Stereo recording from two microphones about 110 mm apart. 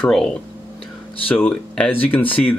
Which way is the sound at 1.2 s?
15° left (ahead or behind).